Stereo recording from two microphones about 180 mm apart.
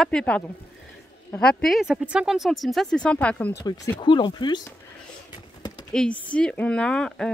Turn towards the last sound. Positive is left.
turn(degrees=5)  # may be behind; listen again after turning